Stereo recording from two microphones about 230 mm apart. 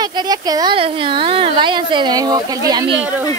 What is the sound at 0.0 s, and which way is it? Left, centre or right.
Speech, centre.